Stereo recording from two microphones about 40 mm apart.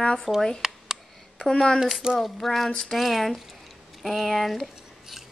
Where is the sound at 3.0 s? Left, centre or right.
Centre.